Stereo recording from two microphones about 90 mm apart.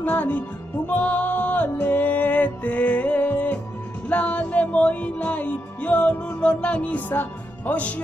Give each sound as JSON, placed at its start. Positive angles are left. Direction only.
{"t": 0.0, "sound": "music", "side_deg": 20}